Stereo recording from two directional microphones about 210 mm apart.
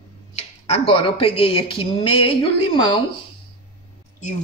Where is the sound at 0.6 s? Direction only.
25° left (ahead or behind).